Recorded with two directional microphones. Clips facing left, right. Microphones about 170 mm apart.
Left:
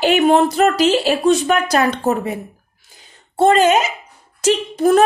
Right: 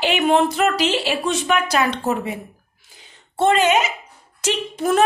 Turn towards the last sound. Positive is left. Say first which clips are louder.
# left 6 dB
turn(degrees=40)  # may be behind; listen again after turning